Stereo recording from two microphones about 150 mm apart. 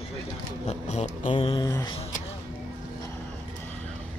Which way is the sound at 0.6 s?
50° left (ahead or behind).